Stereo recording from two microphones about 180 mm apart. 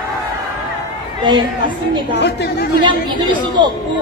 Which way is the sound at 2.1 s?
70° left (ahead or behind).